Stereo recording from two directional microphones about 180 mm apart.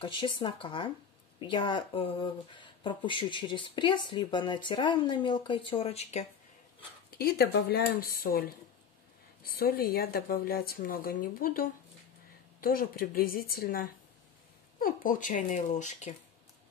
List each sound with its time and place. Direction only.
0.0 s speech: 25° left (ahead or behind)
7.1 s speech: 60° left (ahead or behind); by 16.2 s 40° left (ahead or behind)